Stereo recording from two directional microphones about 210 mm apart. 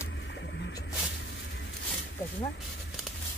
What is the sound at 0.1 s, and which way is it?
Music, 60° left (ahead or behind).